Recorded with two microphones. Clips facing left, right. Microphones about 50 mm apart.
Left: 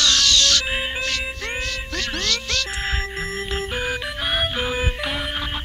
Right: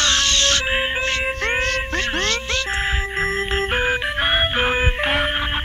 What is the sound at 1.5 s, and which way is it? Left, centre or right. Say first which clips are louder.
Cat: right 7 dB; right.